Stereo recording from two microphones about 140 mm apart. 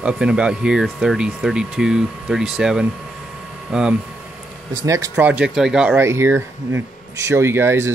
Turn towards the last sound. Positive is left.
turn(degrees=-15)  # may be behind; listen again after turning